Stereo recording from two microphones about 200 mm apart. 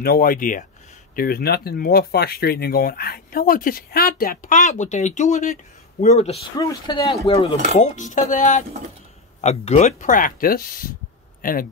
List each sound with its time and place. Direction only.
0.0 s speech: 50° left (ahead or behind)
6.6 s speech: 20° left (ahead or behind); by 10.6 s 45° left (ahead or behind)